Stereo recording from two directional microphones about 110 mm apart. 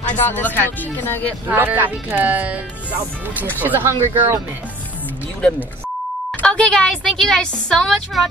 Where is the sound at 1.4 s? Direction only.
15° right (ahead or behind).